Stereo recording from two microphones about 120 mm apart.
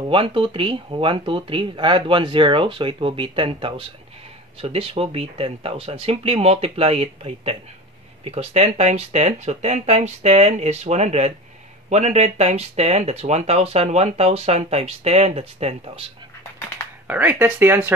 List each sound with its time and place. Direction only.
0.1 s speech: 45° right (ahead or behind)
17.1 s speech: 15° right (ahead or behind)